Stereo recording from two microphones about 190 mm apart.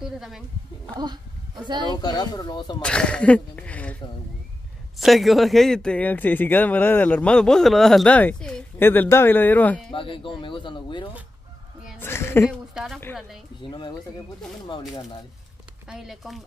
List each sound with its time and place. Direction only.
1.9 s speech: 20° left (ahead or behind)
2.8 s speech: 5° left (ahead or behind)
5.0 s speech: centre (ahead or behind)
9.9 s speech: 25° left (ahead or behind)
12.0 s a sound: 15° left (ahead or behind)
12.4 s speech: centre (ahead or behind)
13.6 s speech: 25° left (ahead or behind)
15.9 s speech: centre (ahead or behind)